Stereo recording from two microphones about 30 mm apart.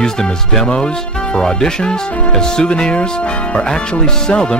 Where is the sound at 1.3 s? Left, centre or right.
Left.